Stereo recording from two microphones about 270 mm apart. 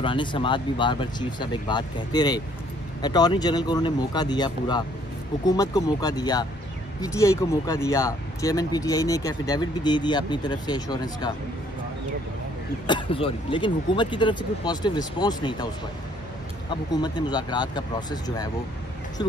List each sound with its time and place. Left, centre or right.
0.0 s speech: centre
12.8 s speech: centre
16.9 s speech: centre